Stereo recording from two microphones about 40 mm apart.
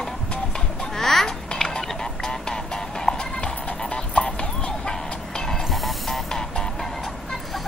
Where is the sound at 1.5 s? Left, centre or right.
Centre.